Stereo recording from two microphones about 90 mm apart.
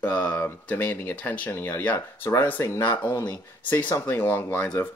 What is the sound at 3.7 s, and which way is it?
Speech, 20° left (ahead or behind).